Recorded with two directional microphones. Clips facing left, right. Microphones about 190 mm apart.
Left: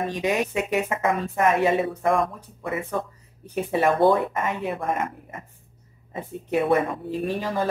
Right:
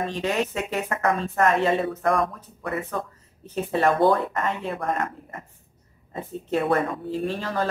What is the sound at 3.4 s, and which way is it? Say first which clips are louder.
Speech: even; 15° left (ahead or behind).